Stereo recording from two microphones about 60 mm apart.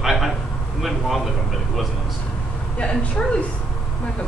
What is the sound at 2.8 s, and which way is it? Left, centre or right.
Speech, centre.